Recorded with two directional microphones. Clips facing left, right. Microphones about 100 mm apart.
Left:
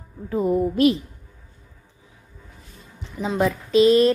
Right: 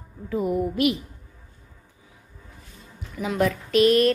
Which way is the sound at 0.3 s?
30° left (ahead or behind).